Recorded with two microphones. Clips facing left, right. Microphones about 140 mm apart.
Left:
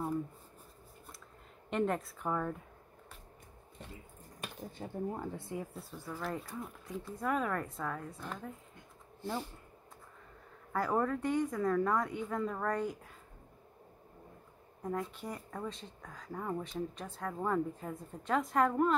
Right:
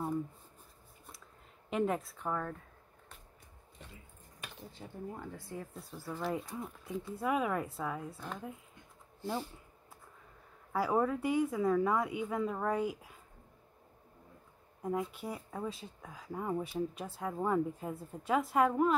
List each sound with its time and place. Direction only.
1.7 s a woman's voice: 5° right (ahead or behind)
4.6 s speech: 40° left (ahead or behind)
5.3 s speech: 20° left (ahead or behind)
5.8 s a woman's voice: centre (ahead or behind)
10.7 s speech: 10° right (ahead or behind)
14.8 s speech: 10° right (ahead or behind)